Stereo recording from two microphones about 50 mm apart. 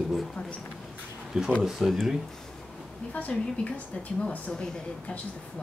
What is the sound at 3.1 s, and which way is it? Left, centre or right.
Speech, left.